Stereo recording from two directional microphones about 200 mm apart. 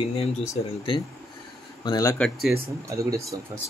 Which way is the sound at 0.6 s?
25° left (ahead or behind).